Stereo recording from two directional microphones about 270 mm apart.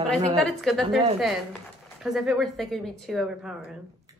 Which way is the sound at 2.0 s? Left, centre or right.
Centre.